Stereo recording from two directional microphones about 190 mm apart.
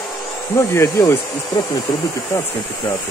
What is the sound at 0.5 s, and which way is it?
Speech, 15° left (ahead or behind).